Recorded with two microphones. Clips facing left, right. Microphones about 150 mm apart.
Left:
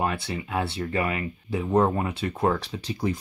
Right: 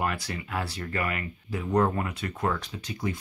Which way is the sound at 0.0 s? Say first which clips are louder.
Left 3 dB; 25° left (ahead or behind).